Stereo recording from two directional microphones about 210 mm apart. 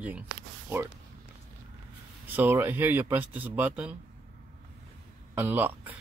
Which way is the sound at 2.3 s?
10° right (ahead or behind).